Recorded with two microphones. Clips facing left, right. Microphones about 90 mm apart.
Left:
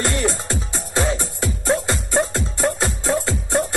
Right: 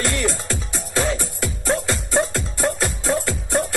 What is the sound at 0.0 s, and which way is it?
Music, 20° left (ahead or behind).